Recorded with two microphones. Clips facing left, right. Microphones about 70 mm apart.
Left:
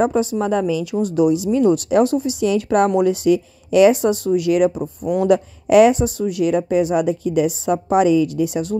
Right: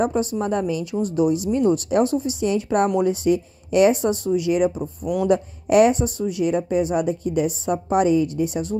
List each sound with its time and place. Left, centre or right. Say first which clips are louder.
0.1 s speech: left 4 dB; left
3.0 s speech: left 4 dB; left
4.3 s speech: left 3 dB; left
5.2 s speech: left 3 dB; left